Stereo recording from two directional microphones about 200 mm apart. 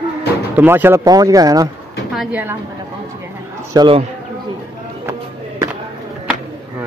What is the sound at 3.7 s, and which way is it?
Speech, 25° right (ahead or behind).